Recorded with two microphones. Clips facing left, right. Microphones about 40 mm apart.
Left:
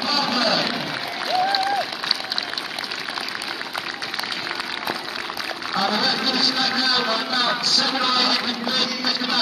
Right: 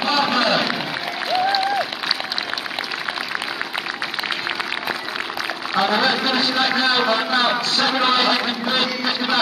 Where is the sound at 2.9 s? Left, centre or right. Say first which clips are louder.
Right 3 dB; centre.